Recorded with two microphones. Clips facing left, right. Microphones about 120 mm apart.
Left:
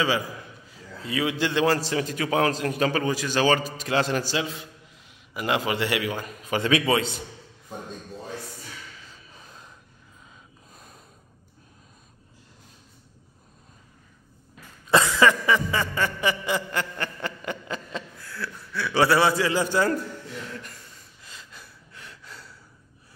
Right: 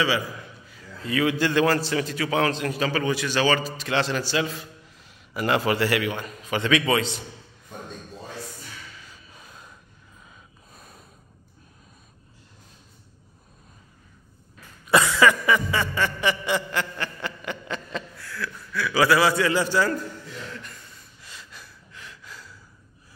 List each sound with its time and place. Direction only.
1.0 s a man's voice: 15° left (ahead or behind)
1.8 s a man's voice: 35° left (ahead or behind)
2.7 s a man's voice: 50° left (ahead or behind)
4.3 s a man's voice: 20° left (ahead or behind)
6.5 s a man's voice: 35° left (ahead or behind)
14.9 s cough: 25° left (ahead or behind)
15.4 s music: 25° left (ahead or behind)
15.8 s music: 20° right (ahead or behind)
16.3 s a sound: 45° left (ahead or behind)
17.9 s chuckle: 30° left (ahead or behind)
19.4 s a man's voice: 15° left (ahead or behind)
21.3 s gasp: 20° left (ahead or behind)